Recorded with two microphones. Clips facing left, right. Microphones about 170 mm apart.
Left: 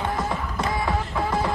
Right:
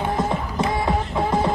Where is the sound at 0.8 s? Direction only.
20° right (ahead or behind).